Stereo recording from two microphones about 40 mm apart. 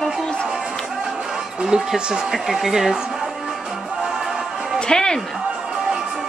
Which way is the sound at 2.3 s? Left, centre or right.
Centre.